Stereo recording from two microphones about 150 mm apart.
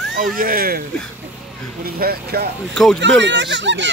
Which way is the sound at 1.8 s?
90° right.